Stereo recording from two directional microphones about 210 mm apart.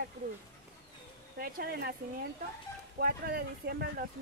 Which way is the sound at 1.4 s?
50° right (ahead or behind).